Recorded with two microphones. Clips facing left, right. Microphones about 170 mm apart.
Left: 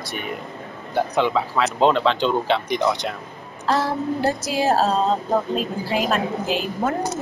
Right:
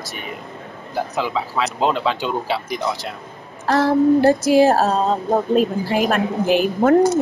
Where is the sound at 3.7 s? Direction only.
60° right (ahead or behind).